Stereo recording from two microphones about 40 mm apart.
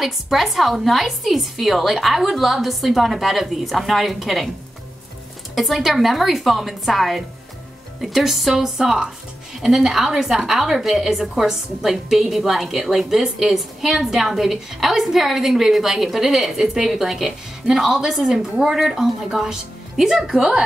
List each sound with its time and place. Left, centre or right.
0.0 s a woman's voice: centre
5.5 s a woman's voice: centre